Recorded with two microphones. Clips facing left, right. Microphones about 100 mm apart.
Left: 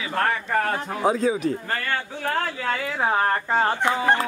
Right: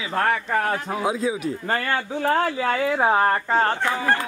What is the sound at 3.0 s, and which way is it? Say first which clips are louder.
Speech: right 1 dB; 10° right (ahead or behind).